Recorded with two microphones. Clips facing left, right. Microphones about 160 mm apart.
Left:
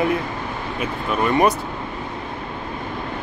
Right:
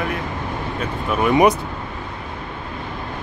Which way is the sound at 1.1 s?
5° right (ahead or behind).